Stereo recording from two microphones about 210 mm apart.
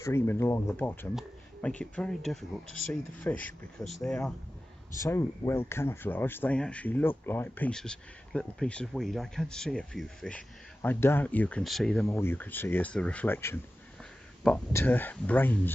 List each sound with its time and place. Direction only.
0.0 s speech: 10° left (ahead or behind)
3.8 s speech: 15° left (ahead or behind)